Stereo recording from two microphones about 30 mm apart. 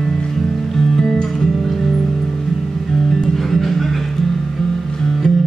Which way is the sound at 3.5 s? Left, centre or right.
Centre.